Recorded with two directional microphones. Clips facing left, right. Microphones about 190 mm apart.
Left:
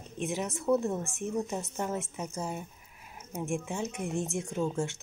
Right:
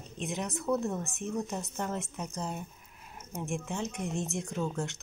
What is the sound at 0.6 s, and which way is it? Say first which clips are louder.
Speech: left 4 dB; 5° left (ahead or behind).